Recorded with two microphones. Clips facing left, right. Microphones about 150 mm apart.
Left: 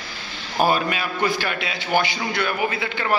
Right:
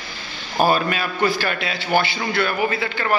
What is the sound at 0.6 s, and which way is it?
A man's voice, 15° left (ahead or behind).